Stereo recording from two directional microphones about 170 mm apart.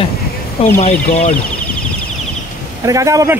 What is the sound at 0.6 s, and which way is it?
Speech, 35° left (ahead or behind).